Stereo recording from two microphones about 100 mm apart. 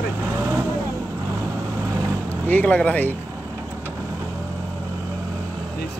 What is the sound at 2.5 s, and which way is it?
Speech, 15° left (ahead or behind).